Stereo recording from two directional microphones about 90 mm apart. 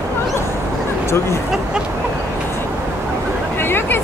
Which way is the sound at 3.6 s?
25° left (ahead or behind).